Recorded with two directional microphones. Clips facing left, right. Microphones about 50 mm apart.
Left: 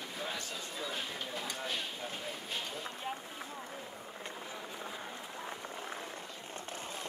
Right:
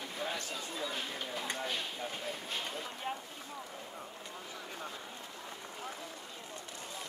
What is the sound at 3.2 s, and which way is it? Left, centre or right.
Boat, centre.